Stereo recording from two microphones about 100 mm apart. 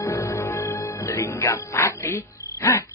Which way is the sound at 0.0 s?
30° left (ahead or behind).